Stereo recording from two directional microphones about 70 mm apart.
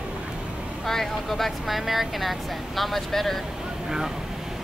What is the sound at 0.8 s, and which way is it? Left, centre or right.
Speech, centre.